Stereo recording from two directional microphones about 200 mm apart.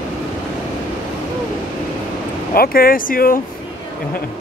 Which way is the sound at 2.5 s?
50° left (ahead or behind).